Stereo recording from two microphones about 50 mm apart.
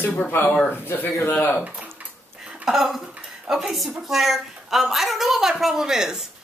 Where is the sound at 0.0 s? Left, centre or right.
Left.